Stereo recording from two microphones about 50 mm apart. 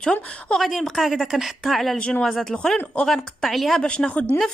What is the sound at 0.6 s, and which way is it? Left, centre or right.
A woman's voice, centre.